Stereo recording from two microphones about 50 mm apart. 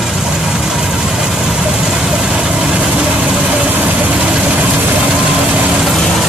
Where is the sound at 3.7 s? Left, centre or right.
Right.